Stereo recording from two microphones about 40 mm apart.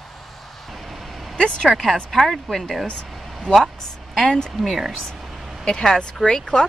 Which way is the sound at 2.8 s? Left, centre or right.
Left.